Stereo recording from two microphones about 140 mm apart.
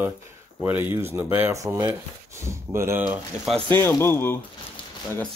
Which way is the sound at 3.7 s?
15° left (ahead or behind).